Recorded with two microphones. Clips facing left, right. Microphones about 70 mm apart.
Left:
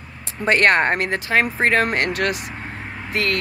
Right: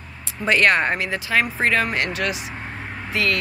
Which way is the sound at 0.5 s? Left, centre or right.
Left.